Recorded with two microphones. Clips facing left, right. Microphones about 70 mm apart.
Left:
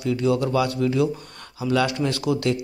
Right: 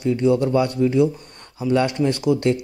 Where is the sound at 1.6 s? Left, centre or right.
Centre.